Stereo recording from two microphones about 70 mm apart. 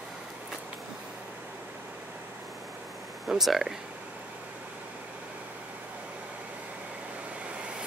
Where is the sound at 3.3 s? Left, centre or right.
Centre.